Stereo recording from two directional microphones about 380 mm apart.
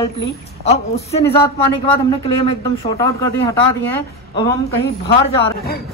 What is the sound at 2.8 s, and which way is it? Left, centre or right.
Speech, centre.